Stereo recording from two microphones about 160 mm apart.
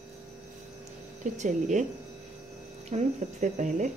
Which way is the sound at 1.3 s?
50° right (ahead or behind).